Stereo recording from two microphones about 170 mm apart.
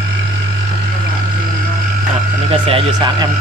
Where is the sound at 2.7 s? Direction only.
25° right (ahead or behind).